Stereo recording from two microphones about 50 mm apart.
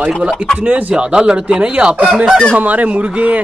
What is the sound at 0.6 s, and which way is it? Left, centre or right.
Speech, right.